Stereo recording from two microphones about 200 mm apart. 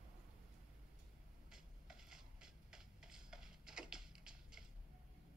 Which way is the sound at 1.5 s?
5° right (ahead or behind).